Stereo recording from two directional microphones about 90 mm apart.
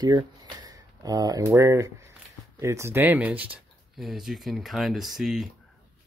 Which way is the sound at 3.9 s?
5° right (ahead or behind).